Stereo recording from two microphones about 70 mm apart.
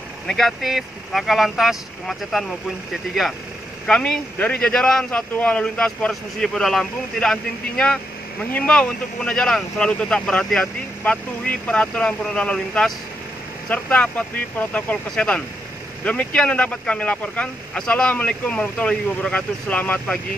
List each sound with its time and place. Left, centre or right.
0.3 s speech: centre
3.8 s speech: centre